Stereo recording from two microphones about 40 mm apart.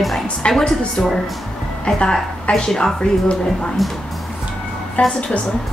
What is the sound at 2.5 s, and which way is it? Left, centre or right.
Speech, centre.